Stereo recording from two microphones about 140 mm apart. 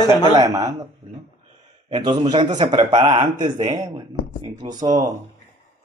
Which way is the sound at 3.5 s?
65° right (ahead or behind).